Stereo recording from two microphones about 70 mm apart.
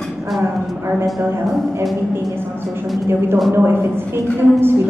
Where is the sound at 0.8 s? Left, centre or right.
Right.